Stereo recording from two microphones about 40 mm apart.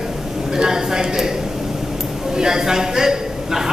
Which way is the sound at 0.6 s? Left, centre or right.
Centre.